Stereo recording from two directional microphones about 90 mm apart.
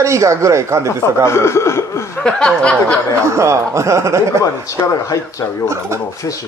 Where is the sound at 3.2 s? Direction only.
35° right (ahead or behind).